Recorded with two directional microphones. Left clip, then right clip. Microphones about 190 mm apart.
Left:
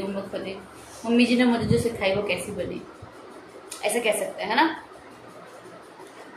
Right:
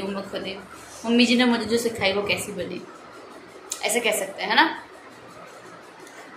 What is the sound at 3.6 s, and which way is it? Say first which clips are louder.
A woman's voice: right 1 dB; 5° right (ahead or behind).